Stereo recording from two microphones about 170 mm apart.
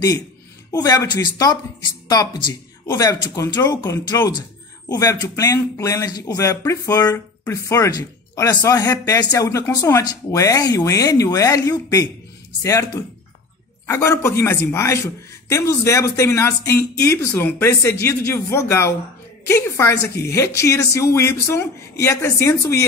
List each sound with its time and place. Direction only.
0.7 s a man's voice: 20° left (ahead or behind)